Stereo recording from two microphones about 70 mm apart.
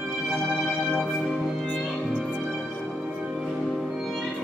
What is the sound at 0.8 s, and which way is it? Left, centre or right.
Music, centre.